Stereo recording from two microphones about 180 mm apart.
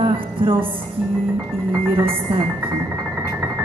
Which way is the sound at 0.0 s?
30° right (ahead or behind).